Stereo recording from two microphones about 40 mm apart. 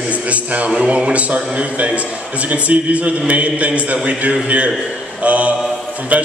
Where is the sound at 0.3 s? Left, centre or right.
Right.